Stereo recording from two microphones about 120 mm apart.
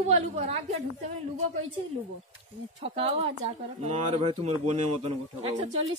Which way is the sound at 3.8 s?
75° right (ahead or behind).